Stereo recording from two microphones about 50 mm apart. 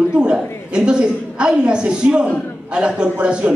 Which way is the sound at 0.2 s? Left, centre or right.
Centre.